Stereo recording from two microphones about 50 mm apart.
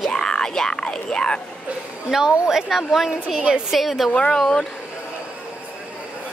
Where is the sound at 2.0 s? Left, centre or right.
Centre.